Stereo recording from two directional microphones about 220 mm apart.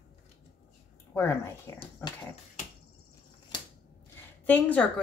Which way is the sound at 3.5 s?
20° left (ahead or behind).